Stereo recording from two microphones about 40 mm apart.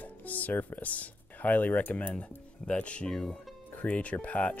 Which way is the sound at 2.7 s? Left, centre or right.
Left.